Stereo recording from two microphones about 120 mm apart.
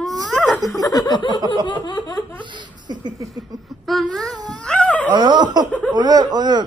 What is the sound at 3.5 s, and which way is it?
Speech, 30° right (ahead or behind).